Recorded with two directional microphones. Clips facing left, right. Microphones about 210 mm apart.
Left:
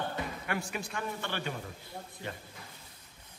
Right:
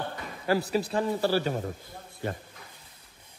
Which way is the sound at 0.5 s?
35° right (ahead or behind).